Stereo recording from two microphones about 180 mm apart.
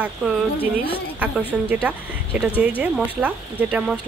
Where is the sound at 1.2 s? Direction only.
10° right (ahead or behind).